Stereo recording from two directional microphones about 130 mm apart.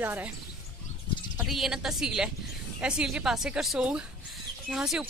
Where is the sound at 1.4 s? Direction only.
Centre (ahead or behind).